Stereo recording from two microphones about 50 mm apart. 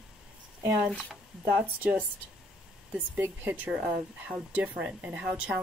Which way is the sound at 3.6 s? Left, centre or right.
Right.